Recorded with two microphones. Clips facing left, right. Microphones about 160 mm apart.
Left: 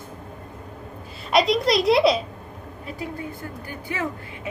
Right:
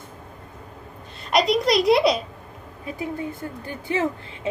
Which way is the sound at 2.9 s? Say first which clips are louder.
Right 4 dB; 25° right (ahead or behind).